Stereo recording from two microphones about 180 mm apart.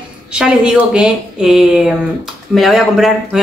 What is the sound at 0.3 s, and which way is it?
Speech, 5° right (ahead or behind).